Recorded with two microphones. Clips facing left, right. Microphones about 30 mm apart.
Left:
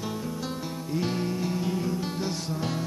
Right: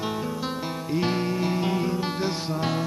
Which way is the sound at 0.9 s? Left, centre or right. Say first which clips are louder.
Right 4 dB; right.